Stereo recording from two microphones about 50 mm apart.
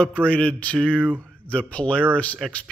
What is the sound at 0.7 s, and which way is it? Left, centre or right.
Speech, centre.